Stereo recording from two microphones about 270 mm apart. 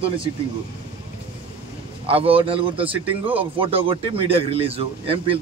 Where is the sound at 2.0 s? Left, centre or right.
Right.